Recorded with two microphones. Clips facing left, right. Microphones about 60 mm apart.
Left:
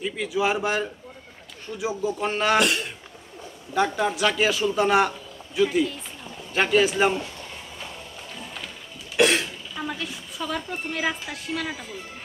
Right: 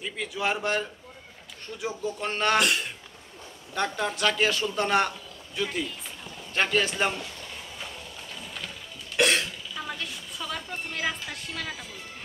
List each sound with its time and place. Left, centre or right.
0.0 s a man's voice: centre
9.1 s cough: centre
9.8 s a woman's voice: centre